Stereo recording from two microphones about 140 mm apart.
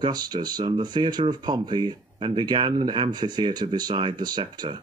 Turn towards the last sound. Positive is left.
turn(degrees=-30)  # may be behind; listen again after turning